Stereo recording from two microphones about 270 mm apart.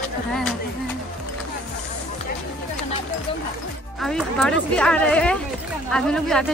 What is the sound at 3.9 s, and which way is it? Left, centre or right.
A woman's voice, centre.